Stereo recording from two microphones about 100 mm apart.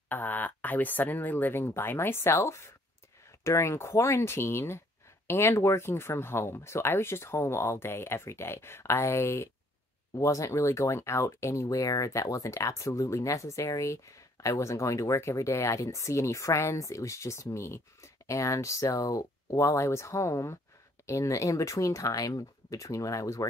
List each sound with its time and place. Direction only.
0.1 s speech: 20° left (ahead or behind); by 23.4 s 35° left (ahead or behind)